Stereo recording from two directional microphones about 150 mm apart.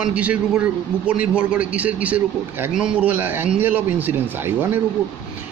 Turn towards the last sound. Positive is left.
turn(degrees=-15)  # may be behind; listen again after turning